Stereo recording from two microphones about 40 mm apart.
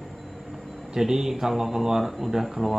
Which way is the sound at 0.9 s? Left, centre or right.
Centre.